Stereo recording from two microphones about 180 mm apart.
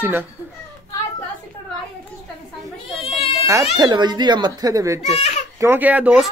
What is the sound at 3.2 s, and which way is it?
Baby cry, 35° left (ahead or behind).